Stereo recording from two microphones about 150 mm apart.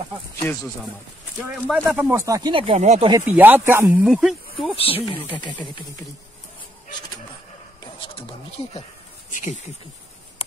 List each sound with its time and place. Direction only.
0.4 s speech: 15° left (ahead or behind)
1.7 s speech: 10° right (ahead or behind)
2.1 s speech: 20° right (ahead or behind)
2.5 s speech: 40° right (ahead or behind)
3.3 s speech: 10° right (ahead or behind)
4.0 s speech: 5° right (ahead or behind)
4.7 s music: 40° left (ahead or behind)
7.8 s a sound: 35° left (ahead or behind)
9.3 s speech: 55° left (ahead or behind)